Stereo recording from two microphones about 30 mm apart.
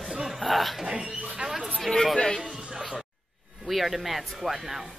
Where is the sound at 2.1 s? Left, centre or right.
Left.